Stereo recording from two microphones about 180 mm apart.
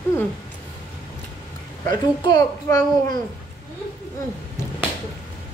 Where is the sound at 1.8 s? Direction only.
20° left (ahead or behind).